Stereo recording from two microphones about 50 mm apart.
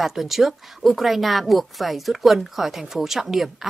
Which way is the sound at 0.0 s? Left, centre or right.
Centre.